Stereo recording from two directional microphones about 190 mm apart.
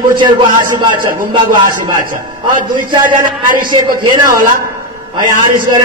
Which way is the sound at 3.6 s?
25° right (ahead or behind).